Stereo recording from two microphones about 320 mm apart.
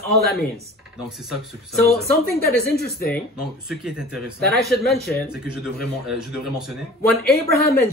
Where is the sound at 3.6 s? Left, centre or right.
Centre.